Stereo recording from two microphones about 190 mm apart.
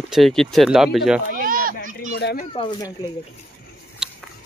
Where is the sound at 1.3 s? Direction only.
45° right (ahead or behind).